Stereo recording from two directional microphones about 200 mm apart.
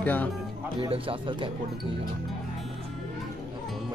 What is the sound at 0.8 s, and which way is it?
Speech, 25° right (ahead or behind).